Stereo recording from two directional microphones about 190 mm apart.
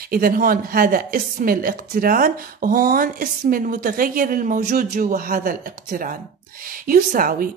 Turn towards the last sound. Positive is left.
turn(degrees=-50)  # may be behind; listen again after turning